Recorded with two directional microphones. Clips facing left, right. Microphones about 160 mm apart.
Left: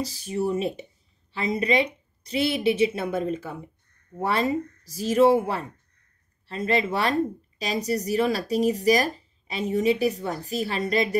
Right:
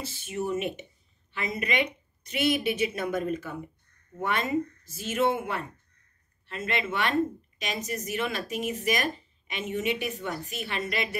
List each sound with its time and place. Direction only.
0.0 s a woman's voice: 35° left (ahead or behind)